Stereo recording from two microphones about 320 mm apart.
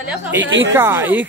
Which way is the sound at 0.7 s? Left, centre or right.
Centre.